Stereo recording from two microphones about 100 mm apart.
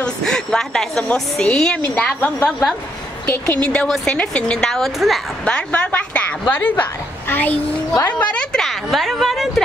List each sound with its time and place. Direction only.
0.0 s a woman's voice: 5° left (ahead or behind)
5.4 s a woman's voice: 15° left (ahead or behind)
8.5 s a woman's voice: centre (ahead or behind)